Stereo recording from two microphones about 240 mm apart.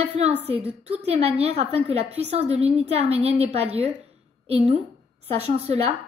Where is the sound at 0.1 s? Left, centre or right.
Right.